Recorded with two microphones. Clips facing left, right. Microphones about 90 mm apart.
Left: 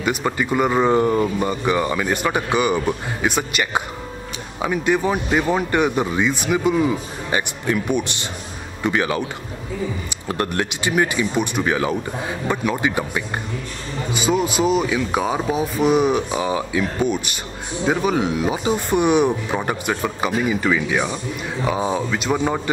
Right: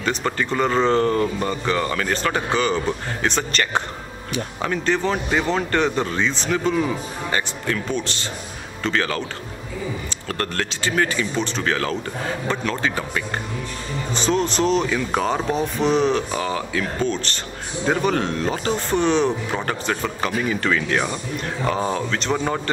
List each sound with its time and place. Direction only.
0.0 s speech: 10° left (ahead or behind)
10.2 s speech: 15° left (ahead or behind)